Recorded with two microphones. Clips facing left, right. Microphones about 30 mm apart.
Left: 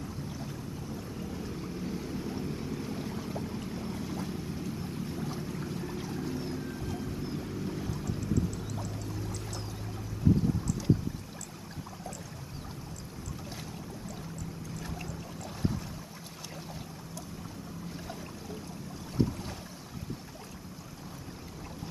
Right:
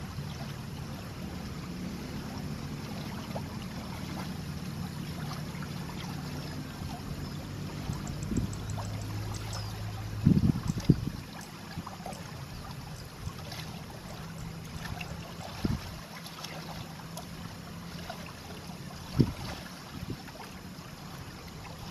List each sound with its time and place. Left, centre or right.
1.4 s boat: centre
5.0 s a sound: right
5.9 s boat: right